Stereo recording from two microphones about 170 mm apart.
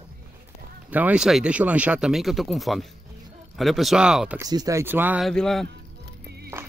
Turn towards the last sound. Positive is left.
turn(degrees=-70)  # may be behind; listen again after turning